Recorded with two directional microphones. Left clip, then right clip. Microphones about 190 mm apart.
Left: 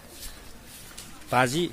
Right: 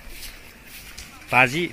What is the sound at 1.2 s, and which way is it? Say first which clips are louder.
Speech: right 6 dB; 15° right (ahead or behind).